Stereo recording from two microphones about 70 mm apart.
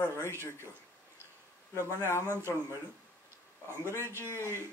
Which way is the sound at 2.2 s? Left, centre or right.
Right.